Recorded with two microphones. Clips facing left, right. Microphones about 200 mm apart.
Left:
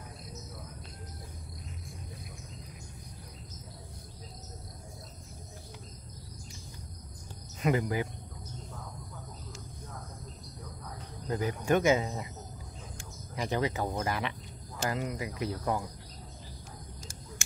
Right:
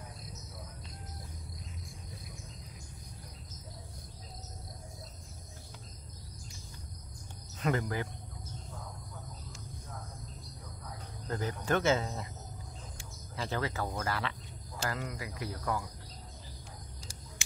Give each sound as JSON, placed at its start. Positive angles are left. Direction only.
{"t": 7.6, "sound": "speech", "side_deg": 15}
{"t": 11.2, "sound": "speech", "side_deg": 15}
{"t": 13.4, "sound": "speech", "side_deg": 15}
{"t": 17.4, "sound": "a sound", "side_deg": 50}